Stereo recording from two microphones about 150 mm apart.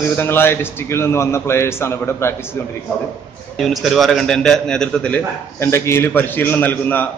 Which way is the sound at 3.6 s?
Centre (ahead or behind).